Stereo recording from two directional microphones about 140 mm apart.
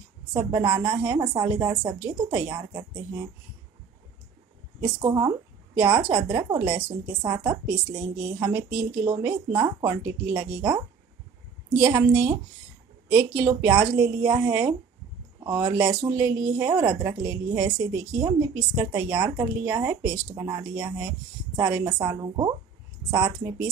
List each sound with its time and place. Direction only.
0.4 s a woman's voice: 20° right (ahead or behind)
5.0 s a woman's voice: 25° right (ahead or behind)
11.8 s a woman's voice: 20° right (ahead or behind)